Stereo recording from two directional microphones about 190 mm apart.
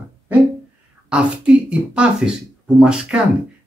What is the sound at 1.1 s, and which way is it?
Speech, 5° right (ahead or behind).